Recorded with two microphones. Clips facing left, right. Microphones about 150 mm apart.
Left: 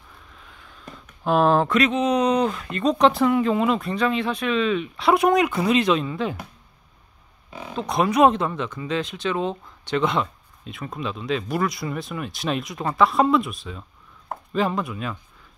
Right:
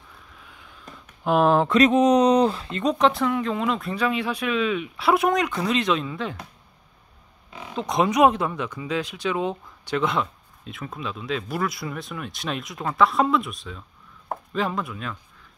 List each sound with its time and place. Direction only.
0.5 s a sound: 10° right (ahead or behind)
1.2 s speech: 15° right (ahead or behind)
1.9 s speech: 40° right (ahead or behind)
3.0 s speech: centre (ahead or behind)
3.9 s speech: 10° right (ahead or behind)
7.7 s speech: 20° right (ahead or behind); by 15.1 s 5° left (ahead or behind)